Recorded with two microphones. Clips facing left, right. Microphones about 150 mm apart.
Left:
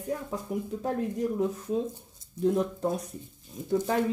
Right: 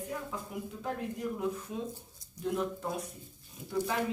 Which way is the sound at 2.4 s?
40° left (ahead or behind).